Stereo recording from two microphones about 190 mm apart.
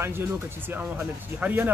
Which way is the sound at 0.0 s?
10° right (ahead or behind).